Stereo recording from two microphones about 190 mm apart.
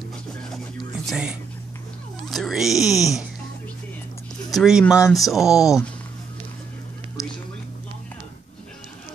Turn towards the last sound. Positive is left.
turn(degrees=15)  # may be behind; listen again after turning